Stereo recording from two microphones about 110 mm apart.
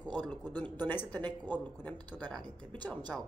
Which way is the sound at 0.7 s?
15° left (ahead or behind).